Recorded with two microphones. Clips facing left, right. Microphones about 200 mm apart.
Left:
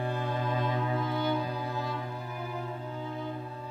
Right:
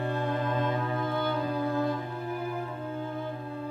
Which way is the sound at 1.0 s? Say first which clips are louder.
Right 1 dB; 55° right (ahead or behind).